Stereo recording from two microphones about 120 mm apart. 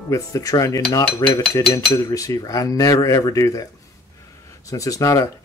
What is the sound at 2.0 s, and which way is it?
Speech, 30° left (ahead or behind).